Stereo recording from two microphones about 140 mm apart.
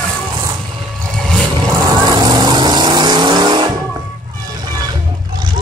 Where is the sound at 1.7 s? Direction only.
25° right (ahead or behind).